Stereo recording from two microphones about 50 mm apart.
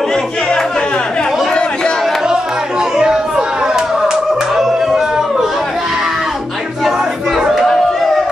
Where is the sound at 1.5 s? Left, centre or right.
Centre.